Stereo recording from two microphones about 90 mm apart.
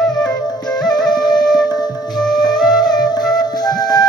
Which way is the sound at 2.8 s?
50° left (ahead or behind).